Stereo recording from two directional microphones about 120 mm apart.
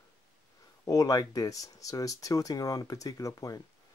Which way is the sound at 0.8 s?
30° left (ahead or behind).